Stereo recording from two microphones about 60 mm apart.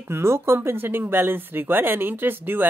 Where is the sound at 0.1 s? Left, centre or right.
Right.